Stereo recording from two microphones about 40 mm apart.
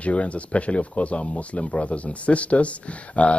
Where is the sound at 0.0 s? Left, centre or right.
Left.